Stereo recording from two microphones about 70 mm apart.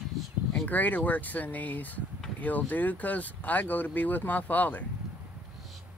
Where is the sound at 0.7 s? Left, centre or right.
Left.